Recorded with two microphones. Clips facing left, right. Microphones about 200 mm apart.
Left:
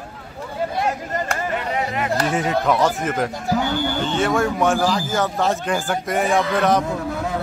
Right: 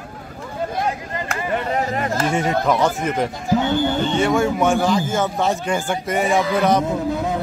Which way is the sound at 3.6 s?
25° right (ahead or behind).